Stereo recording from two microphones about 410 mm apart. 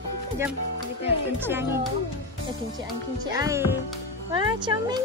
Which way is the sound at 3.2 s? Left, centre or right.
Centre.